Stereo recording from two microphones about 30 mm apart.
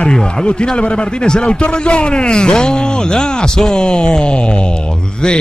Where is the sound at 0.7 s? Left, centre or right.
Left.